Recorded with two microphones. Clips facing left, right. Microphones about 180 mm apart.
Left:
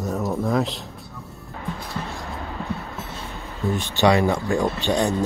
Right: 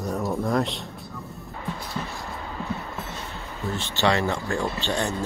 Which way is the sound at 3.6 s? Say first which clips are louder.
Left 5 dB; 15° left (ahead or behind).